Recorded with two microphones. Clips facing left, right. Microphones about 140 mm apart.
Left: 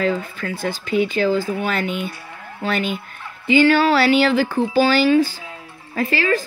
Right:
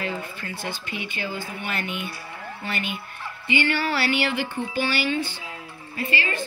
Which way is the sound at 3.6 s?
90° left.